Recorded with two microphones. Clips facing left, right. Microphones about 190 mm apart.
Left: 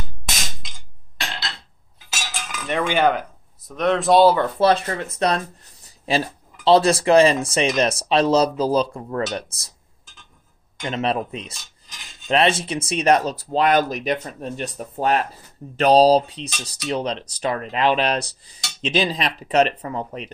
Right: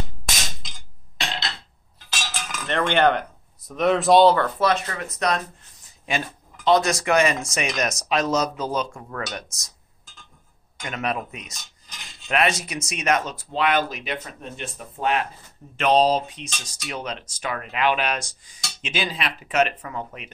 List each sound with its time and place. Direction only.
2.2 s cutlery: centre (ahead or behind)
4.6 s speech: 30° left (ahead or behind)
5.9 s a sound: 35° left (ahead or behind)
6.6 s speech: 30° left (ahead or behind)
10.8 s speech: 30° left (ahead or behind)